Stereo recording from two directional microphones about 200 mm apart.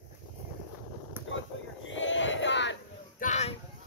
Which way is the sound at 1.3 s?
70° left (ahead or behind).